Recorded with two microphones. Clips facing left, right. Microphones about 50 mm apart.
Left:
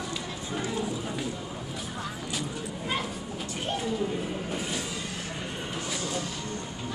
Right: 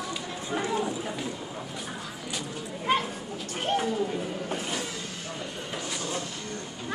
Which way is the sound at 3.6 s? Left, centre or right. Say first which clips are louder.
Right 5 dB; right.